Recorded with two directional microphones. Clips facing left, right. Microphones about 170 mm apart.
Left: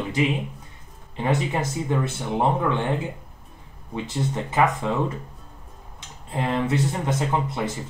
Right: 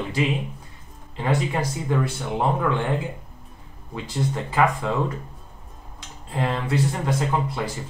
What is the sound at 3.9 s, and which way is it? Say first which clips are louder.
Speech: even; 20° left (ahead or behind).